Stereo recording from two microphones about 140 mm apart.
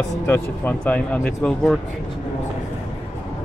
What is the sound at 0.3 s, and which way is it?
Speech, 10° left (ahead or behind).